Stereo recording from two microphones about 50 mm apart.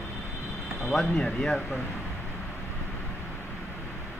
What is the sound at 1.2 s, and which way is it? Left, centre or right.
Speech, centre.